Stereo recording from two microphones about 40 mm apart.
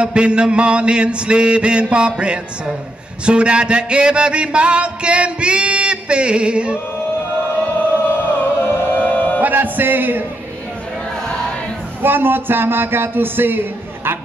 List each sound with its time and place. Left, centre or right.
0.0 s music: right
8.1 s music: left
9.1 s music: left
9.4 s a sound: right
12.0 s speech: right